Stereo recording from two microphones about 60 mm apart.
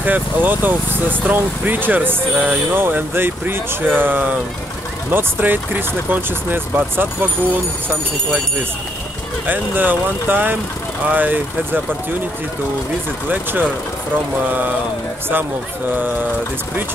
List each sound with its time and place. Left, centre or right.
0.0 s speech: right
2.3 s speech: right
2.7 s speech: right
9.5 s speech: right
13.3 s speech: right